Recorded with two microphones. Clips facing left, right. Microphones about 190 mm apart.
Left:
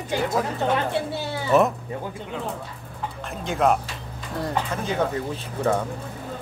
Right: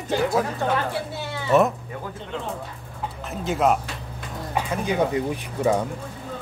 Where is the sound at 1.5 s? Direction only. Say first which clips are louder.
Even; centre (ahead or behind).